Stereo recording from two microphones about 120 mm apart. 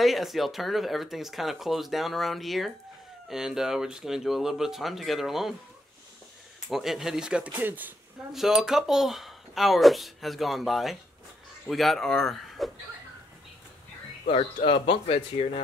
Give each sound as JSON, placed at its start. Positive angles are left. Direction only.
{"t": 0.0, "sound": "speech", "side_deg": 0}
{"t": 6.7, "sound": "speech", "side_deg": -5}
{"t": 8.3, "sound": "speech", "side_deg": -5}
{"t": 14.3, "sound": "speech", "side_deg": 55}